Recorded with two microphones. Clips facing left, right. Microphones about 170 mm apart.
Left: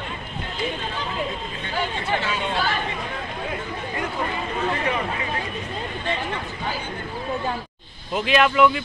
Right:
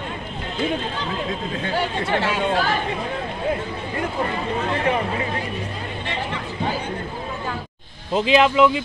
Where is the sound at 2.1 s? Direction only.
90° right.